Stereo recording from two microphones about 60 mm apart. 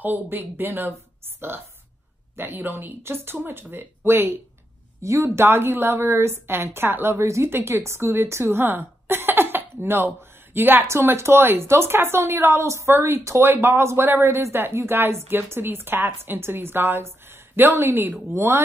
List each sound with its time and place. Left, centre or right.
0.0 s speech: right
5.0 s speech: right
5.4 s a woman's voice: right
10.9 s a woman's voice: right